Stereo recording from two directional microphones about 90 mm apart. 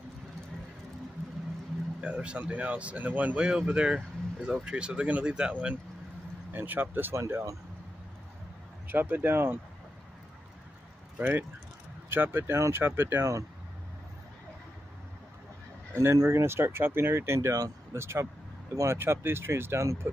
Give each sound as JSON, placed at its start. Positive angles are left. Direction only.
{"t": 2.0, "sound": "speech", "side_deg": -10}
{"t": 8.8, "sound": "speech", "side_deg": -20}
{"t": 11.1, "sound": "speech", "side_deg": -20}
{"t": 16.0, "sound": "speech", "side_deg": -30}